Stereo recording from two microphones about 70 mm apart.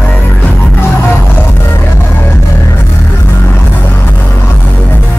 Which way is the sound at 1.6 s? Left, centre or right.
Left.